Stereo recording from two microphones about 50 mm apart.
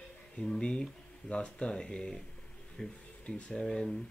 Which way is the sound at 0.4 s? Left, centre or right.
Centre.